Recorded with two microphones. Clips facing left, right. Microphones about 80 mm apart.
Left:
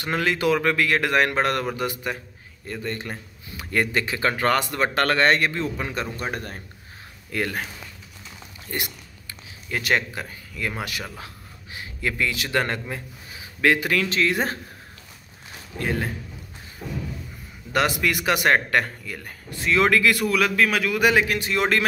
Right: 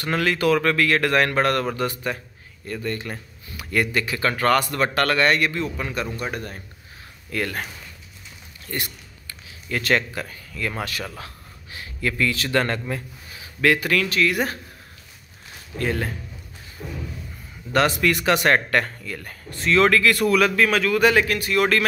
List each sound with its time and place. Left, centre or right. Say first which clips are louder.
0.0 s a man's voice: right 1 dB; centre; by 6.6 s left
7.2 s speech: even; centre
8.6 s a sound: even; centre
10.7 s a man's voice: right 2 dB; centre
15.8 s speech: right 1 dB; centre
16.8 s a man's voice: left 2 dB; centre
20.2 s a man's voice: right 3 dB; centre; by 21.8 s left